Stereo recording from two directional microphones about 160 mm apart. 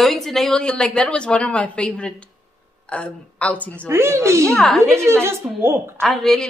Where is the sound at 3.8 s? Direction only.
15° right (ahead or behind).